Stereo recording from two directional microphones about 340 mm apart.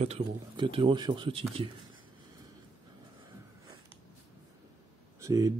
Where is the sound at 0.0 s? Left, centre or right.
Centre.